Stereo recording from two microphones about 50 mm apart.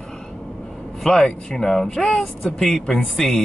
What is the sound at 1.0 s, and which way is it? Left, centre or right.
Speech, centre.